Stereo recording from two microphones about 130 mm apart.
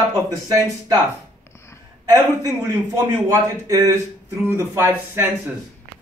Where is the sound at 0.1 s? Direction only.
30° right (ahead or behind).